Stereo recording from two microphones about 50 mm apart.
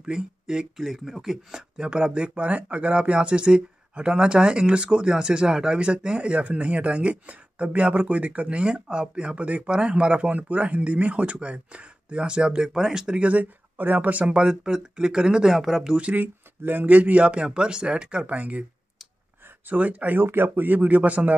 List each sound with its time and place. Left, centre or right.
0.0 s speech: centre
13.3 s speech: right
14.2 s speech: centre
15.5 s speech: centre
16.2 s speech: right; by 18.2 s centre
18.2 s speech: right
19.7 s speech: right
20.2 s speech: right